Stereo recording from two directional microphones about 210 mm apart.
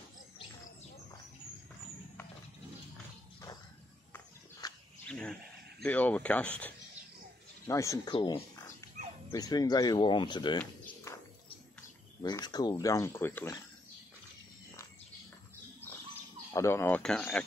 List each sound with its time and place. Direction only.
4.1 s walk: 20° left (ahead or behind)
5.1 s speech: 5° left (ahead or behind); by 10.6 s 20° left (ahead or behind)
12.2 s speech: 20° left (ahead or behind)
16.5 s speech: 15° left (ahead or behind)